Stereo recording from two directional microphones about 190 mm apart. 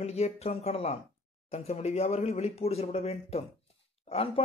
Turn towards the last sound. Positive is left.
turn(degrees=30)  # may be behind; listen again after turning